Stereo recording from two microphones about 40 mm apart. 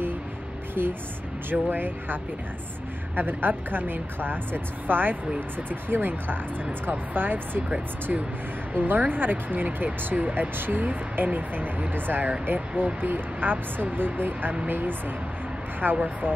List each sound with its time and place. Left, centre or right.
1.5 s speech: right
3.2 s speech: right
8.1 s speech: right
8.7 s speech: right
10.2 s speech: right
10.6 s speech: right